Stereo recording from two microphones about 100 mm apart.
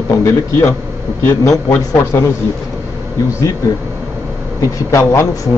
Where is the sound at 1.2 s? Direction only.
30° left (ahead or behind).